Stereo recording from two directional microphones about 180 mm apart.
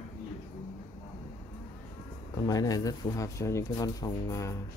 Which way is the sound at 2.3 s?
20° left (ahead or behind).